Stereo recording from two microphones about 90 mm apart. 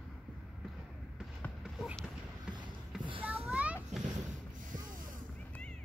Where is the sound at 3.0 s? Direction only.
70° right (ahead or behind).